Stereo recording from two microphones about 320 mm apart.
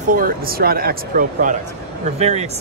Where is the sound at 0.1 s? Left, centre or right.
Right.